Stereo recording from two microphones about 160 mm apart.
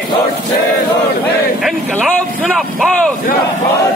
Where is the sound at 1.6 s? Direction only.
5° left (ahead or behind).